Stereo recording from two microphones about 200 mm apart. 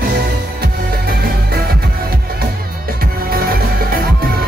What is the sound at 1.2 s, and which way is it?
Music, 50° right (ahead or behind).